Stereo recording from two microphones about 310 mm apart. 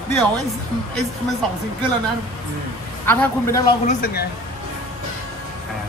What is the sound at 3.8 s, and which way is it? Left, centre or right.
Speech, left.